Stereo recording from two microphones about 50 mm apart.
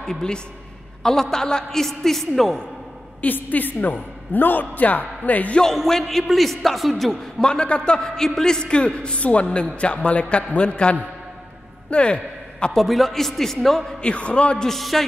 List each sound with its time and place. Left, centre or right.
0.0 s a woman's voice: centre
3.2 s a woman's voice: left
5.6 s a man's voice: centre
7.4 s a man's voice: centre
12.7 s a man's voice: centre
14.0 s a man's voice: left
14.7 s a man's voice: centre